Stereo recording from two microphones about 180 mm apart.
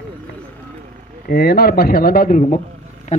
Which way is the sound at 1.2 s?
60° left (ahead or behind).